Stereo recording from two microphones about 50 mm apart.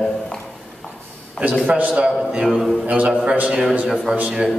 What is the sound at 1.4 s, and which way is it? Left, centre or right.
Speech, right.